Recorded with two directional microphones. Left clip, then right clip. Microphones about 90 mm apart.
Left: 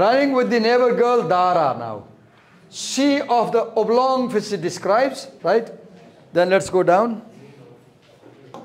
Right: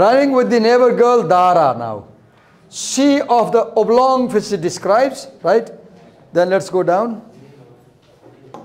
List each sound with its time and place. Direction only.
0.0 s a man's voice: 40° right (ahead or behind)
4.6 s speech: 30° right (ahead or behind)
6.5 s speech: centre (ahead or behind)
8.5 s a sound: 90° right